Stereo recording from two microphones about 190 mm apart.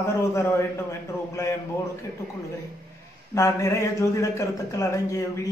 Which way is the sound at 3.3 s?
15° left (ahead or behind).